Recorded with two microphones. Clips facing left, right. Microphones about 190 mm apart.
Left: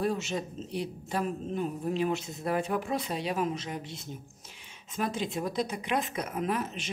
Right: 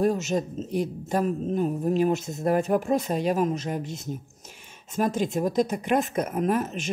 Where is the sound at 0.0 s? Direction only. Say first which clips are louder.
Right 7 dB; 45° right (ahead or behind).